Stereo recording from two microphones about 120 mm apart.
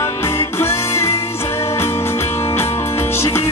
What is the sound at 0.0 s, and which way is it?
Music, 20° left (ahead or behind).